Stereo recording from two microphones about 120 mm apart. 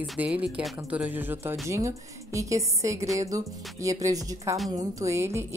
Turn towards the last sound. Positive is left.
turn(degrees=-20)  # may be behind; listen again after turning